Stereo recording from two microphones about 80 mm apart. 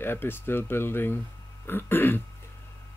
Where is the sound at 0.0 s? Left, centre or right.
Left.